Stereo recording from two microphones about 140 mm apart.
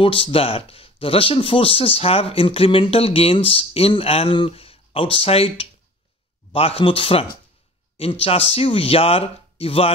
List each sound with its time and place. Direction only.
0.0 s speech: 40° left (ahead or behind)